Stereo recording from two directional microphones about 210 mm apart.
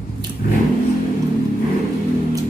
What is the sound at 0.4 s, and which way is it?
Vehicle, 40° left (ahead or behind).